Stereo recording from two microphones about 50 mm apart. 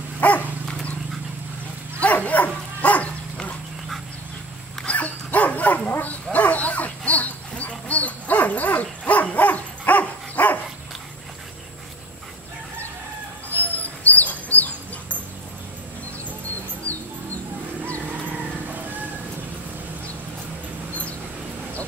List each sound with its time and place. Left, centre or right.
0.2 s dog: left
2.0 s dog: left
4.8 s dog: left
13.5 s dog: left
18.2 s music: right